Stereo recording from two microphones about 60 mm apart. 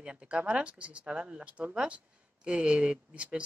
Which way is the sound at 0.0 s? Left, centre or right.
Centre.